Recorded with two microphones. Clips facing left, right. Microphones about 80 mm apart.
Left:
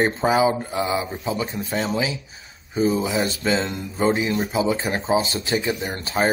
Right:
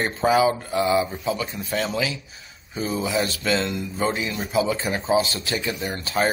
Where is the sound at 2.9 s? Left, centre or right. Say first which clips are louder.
Left 1 dB; centre.